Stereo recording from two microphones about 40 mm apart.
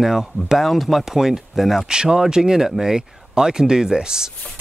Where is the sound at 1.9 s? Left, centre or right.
Centre.